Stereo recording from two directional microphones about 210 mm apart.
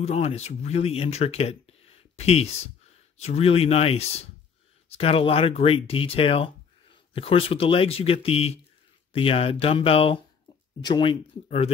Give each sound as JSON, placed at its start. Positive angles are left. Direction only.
{"t": 0.0, "sound": "speech", "side_deg": 30}